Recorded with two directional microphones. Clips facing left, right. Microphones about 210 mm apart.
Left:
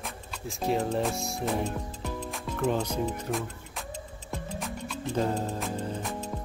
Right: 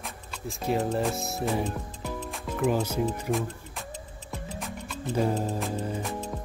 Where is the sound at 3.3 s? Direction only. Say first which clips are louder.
Right 3 dB; centre (ahead or behind).